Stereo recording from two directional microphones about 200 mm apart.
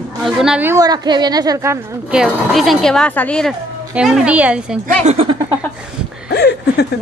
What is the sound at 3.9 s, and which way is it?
Speech, 5° right (ahead or behind).